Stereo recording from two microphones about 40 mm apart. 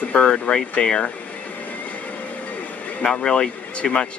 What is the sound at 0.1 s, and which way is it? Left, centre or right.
Speech, left.